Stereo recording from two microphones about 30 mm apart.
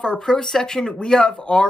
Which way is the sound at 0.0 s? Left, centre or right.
Left.